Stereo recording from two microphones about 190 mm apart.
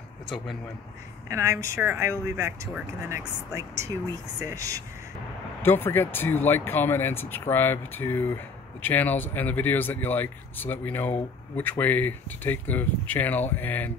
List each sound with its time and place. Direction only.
1.3 s speech: 15° right (ahead or behind)
5.6 s speech: 10° left (ahead or behind)